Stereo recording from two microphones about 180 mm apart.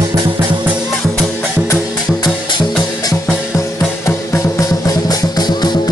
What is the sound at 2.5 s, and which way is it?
Music, 20° left (ahead or behind).